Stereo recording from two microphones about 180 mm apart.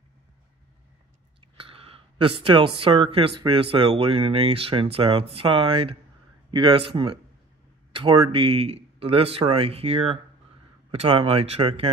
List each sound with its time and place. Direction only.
1.6 s speech: 30° right (ahead or behind)